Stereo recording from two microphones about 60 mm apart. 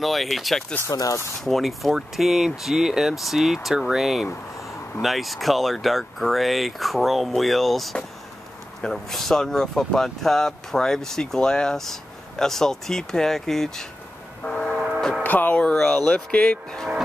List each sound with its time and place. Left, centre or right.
0.0 s speech: centre
0.9 s speech: left
1.4 s speech: centre
14.4 s train: centre
15.2 s speech: left
15.7 s speech: centre